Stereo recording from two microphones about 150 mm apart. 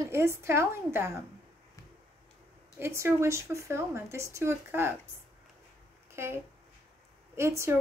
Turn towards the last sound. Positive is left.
turn(degrees=-20)  # may be behind; listen again after turning